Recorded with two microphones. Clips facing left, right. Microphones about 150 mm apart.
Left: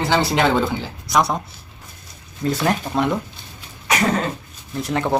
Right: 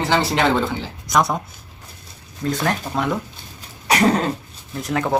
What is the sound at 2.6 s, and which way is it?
Speech, centre (ahead or behind).